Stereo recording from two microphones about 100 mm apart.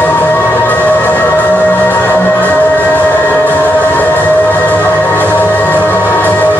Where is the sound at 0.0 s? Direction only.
20° left (ahead or behind).